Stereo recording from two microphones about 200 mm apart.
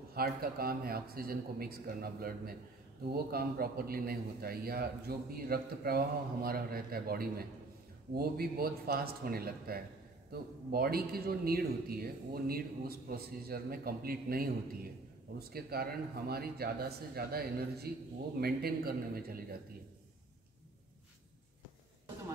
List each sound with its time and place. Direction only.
0.1 s speech: 50° right (ahead or behind)